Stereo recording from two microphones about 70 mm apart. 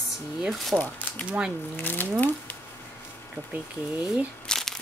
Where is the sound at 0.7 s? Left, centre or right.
Left.